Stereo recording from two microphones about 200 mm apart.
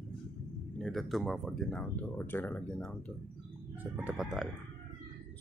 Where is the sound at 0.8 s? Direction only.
Centre (ahead or behind).